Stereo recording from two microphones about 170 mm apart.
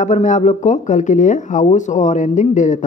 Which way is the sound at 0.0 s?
45° left (ahead or behind).